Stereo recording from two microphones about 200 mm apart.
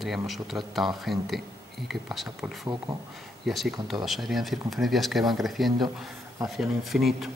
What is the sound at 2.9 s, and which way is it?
Speech, 20° right (ahead or behind).